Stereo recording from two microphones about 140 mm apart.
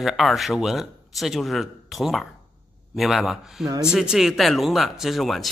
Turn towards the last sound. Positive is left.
turn(degrees=0)  # may be behind; listen again after turning